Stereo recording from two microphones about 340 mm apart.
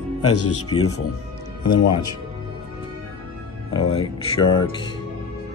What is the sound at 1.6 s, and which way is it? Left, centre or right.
Speech, left.